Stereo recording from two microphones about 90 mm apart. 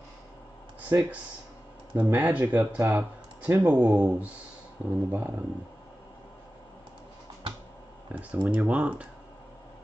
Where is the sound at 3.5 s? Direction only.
30° right (ahead or behind).